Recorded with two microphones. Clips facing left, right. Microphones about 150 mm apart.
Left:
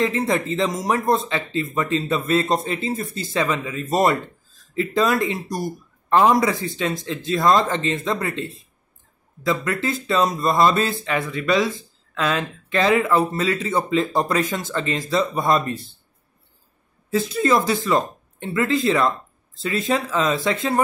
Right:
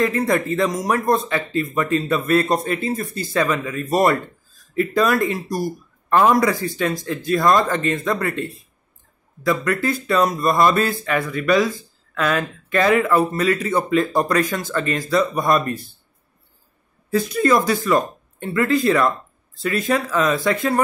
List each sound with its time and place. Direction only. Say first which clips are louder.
0.0 s speech: right 2 dB; 25° left (ahead or behind)
17.1 s speech: right 2 dB; 25° left (ahead or behind)